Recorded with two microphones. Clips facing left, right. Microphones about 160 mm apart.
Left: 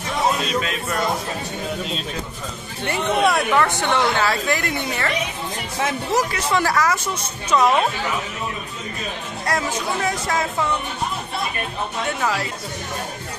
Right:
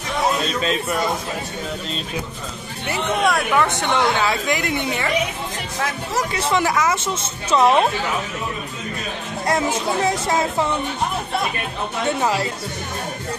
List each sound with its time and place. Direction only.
2.9 s speech: centre (ahead or behind)
3.6 s a woman's voice: 20° right (ahead or behind)
6.3 s speech: 20° right (ahead or behind)
9.5 s speech: 25° right (ahead or behind)
12.2 s speech: 25° right (ahead or behind)